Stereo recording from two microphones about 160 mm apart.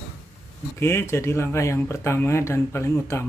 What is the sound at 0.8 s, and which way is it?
Speech, 15° left (ahead or behind).